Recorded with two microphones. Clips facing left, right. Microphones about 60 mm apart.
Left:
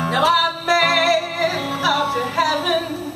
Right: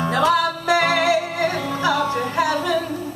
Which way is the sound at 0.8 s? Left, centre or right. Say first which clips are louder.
Left 2 dB; left.